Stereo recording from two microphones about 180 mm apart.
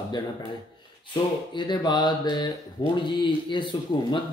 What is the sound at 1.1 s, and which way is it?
Speech, 25° left (ahead or behind).